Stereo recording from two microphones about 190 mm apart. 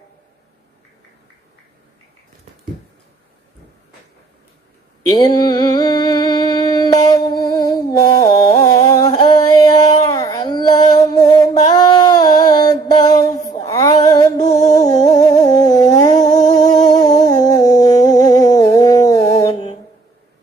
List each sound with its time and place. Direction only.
5.1 s a sound: 20° left (ahead or behind)
13.7 s female singing: 20° left (ahead or behind)
14.4 s music: 40° left (ahead or behind)
14.7 s humming: 20° left (ahead or behind)
16.2 s humming: 40° left (ahead or behind)
16.8 s humming: 20° left (ahead or behind)